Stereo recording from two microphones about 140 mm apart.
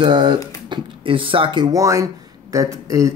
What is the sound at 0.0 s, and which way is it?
Speech, 35° right (ahead or behind).